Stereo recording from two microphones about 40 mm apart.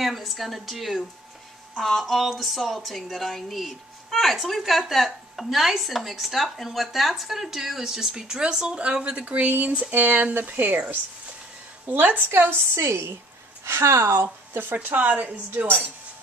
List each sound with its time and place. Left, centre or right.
0.0 s speech: centre; by 9.2 s right
9.5 s speech: right
11.8 s a woman's voice: right
12.2 s a woman's voice: right